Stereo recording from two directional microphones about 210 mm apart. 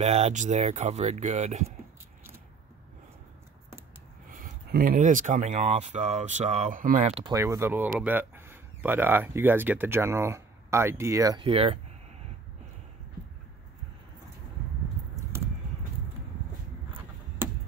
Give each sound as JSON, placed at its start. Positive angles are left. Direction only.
{"t": 0.0, "sound": "speech", "side_deg": -30}
{"t": 4.3, "sound": "speech", "side_deg": -40}
{"t": 7.3, "sound": "speech", "side_deg": -15}
{"t": 17.4, "sound": "a sound", "side_deg": -10}